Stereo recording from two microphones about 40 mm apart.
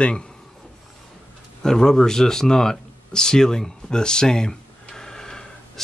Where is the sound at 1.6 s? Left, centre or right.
Centre.